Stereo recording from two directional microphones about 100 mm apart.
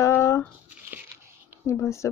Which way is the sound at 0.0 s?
30° left (ahead or behind).